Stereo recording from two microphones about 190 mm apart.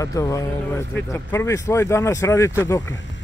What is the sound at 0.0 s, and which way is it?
Speech, 15° left (ahead or behind).